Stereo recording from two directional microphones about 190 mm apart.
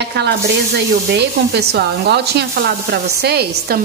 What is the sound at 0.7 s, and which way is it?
Speech, 60° right (ahead or behind).